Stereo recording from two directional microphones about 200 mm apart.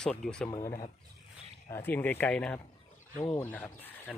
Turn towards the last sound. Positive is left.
turn(degrees=10)  # may be behind; listen again after turning